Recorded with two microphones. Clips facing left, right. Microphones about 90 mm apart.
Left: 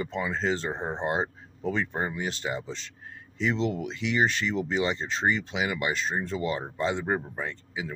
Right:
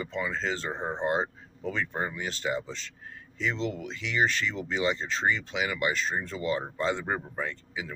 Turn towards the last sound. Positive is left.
turn(degrees=15)  # may be behind; listen again after turning